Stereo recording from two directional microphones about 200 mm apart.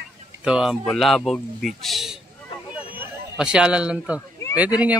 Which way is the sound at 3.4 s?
5° right (ahead or behind).